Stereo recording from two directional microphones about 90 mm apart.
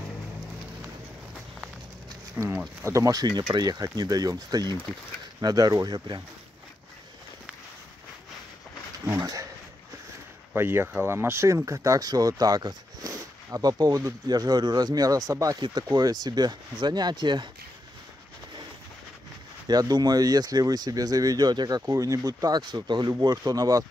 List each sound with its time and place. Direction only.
2.4 s speech: 30° right (ahead or behind); by 6.2 s 55° right (ahead or behind)
9.0 s a sound: 40° right (ahead or behind)
10.5 s speech: 25° right (ahead or behind); by 17.5 s 55° right (ahead or behind)
19.7 s speech: 45° right (ahead or behind)